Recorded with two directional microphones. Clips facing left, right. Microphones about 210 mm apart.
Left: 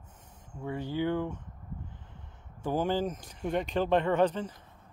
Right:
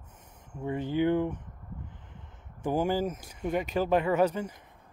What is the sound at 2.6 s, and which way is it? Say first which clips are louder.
Speech: right 1 dB; 10° right (ahead or behind).